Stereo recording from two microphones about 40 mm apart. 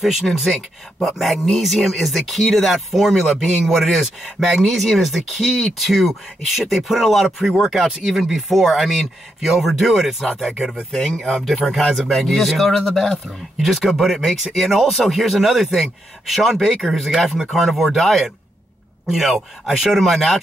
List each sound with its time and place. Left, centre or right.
0.0 s speech: centre
7.4 s speech: centre
7.7 s speech: centre
13.3 s speech: centre